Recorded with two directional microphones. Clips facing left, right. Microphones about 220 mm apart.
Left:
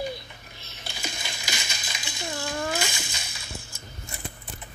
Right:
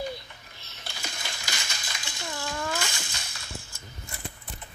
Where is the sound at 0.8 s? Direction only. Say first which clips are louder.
Left 3 dB; 15° left (ahead or behind).